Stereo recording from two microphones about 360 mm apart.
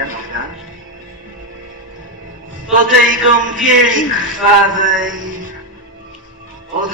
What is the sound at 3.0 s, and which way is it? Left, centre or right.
A man's voice, right.